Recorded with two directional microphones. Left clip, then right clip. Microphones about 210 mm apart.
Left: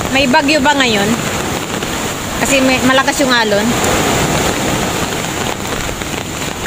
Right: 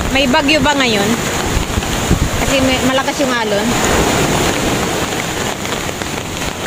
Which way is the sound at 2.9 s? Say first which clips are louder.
Left 4 dB; 15° left (ahead or behind).